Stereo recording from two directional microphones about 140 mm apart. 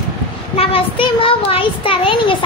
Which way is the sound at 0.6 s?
40° left (ahead or behind).